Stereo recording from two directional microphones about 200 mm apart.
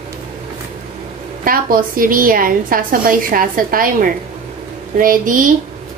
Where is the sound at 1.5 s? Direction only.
45° right (ahead or behind).